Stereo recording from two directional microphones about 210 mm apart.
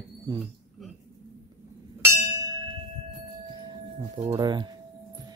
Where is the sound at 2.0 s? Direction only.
15° right (ahead or behind).